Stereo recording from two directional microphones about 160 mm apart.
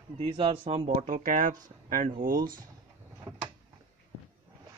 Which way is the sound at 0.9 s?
50° right (ahead or behind).